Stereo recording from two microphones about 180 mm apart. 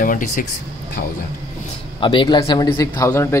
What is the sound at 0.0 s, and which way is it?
Speech, 50° left (ahead or behind).